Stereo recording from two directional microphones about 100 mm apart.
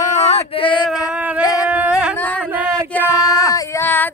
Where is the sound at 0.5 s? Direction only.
60° left (ahead or behind).